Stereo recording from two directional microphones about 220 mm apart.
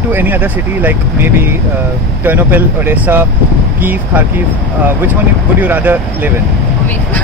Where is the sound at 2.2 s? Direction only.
10° right (ahead or behind).